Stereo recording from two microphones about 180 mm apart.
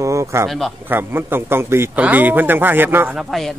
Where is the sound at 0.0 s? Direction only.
15° right (ahead or behind).